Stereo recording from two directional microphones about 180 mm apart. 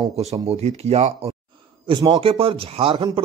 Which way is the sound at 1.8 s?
25° right (ahead or behind).